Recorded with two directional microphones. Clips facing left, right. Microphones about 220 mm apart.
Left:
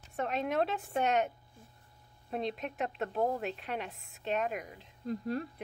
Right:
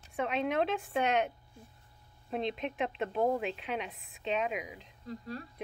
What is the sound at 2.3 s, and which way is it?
A woman's voice, centre (ahead or behind).